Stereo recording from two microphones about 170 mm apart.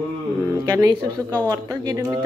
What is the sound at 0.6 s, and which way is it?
A woman's voice, 20° right (ahead or behind).